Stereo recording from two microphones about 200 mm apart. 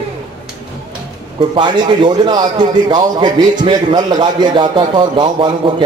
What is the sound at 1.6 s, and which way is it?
Speech, 20° right (ahead or behind).